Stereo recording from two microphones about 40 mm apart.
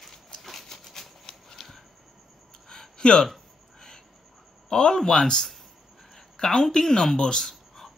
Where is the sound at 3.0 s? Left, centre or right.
Left.